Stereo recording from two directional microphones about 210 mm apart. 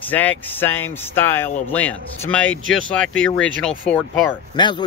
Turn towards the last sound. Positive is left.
turn(degrees=20)  # may be behind; listen again after turning